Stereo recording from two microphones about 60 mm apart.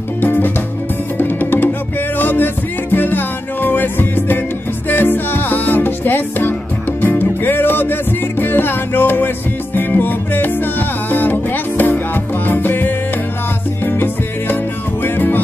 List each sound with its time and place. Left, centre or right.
0.2 s music: left
15.0 s music: left